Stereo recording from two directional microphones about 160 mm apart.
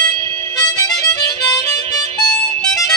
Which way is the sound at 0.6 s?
20° left (ahead or behind).